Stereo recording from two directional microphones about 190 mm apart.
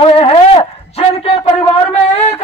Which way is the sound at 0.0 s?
30° left (ahead or behind).